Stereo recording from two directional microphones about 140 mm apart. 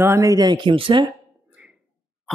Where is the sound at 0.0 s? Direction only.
20° right (ahead or behind); by 1.0 s 35° right (ahead or behind).